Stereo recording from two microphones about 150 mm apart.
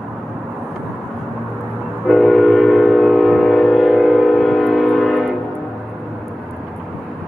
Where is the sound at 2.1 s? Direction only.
Centre (ahead or behind).